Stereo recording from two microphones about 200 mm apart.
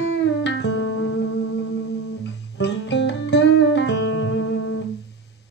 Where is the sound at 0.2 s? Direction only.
60° left (ahead or behind).